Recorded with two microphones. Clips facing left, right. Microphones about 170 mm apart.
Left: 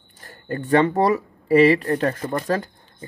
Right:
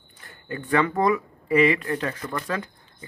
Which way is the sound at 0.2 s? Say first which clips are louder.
Left 5 dB; 40° left (ahead or behind).